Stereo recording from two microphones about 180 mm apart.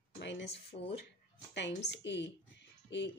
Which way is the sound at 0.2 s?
75° left (ahead or behind).